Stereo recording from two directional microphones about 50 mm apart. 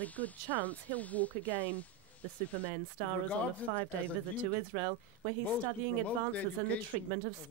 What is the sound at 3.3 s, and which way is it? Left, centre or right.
Speech, left.